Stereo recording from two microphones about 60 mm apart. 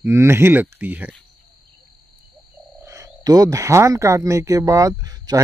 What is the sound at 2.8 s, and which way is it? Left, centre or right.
Speech, right.